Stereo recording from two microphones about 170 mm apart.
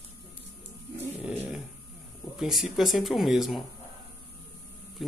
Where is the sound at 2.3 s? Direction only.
5° right (ahead or behind).